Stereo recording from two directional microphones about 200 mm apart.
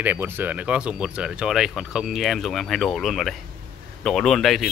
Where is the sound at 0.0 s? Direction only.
10° right (ahead or behind).